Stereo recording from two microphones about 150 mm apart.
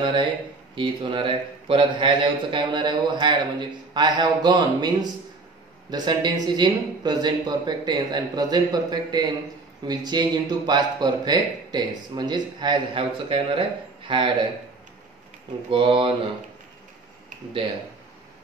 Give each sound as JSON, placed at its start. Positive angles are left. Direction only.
{"t": 0.0, "sound": "a man's voice", "side_deg": -30}
{"t": 15.7, "sound": "a man's voice", "side_deg": -35}